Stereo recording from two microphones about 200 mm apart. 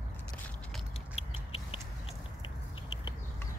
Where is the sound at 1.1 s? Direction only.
30° left (ahead or behind).